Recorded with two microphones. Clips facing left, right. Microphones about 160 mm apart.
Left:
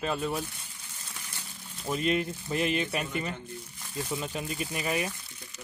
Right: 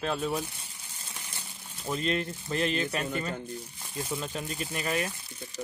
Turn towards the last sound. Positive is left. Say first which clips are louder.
# even
turn(degrees=10)  # may be behind; listen again after turning